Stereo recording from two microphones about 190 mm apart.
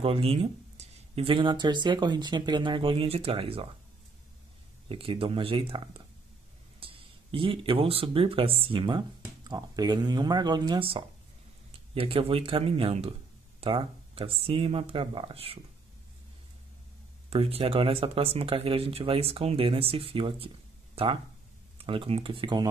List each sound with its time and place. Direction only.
0.0 s speech: 30° right (ahead or behind)
4.8 s speech: 30° right (ahead or behind)
17.3 s speech: 30° right (ahead or behind)